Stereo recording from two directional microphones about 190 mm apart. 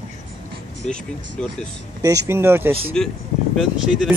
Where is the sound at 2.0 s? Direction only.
20° right (ahead or behind).